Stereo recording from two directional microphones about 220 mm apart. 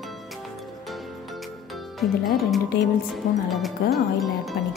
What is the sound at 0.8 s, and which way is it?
Music, centre (ahead or behind).